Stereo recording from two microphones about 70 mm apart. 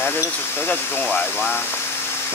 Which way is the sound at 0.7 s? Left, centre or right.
Centre.